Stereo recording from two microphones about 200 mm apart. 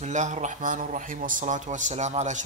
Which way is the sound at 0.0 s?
35° right (ahead or behind).